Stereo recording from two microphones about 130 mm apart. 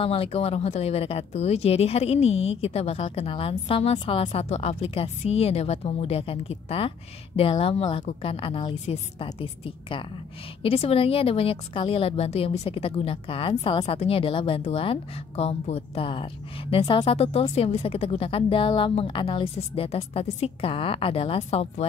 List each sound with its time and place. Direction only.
0.0 s speech: 45° left (ahead or behind)
7.5 s speech: 60° left (ahead or behind)